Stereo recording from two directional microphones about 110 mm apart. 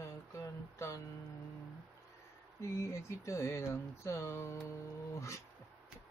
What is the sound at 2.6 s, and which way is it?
Speech, 25° left (ahead or behind).